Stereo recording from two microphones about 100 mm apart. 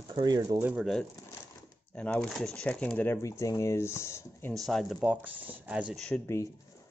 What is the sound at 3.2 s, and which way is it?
Speech, 30° left (ahead or behind).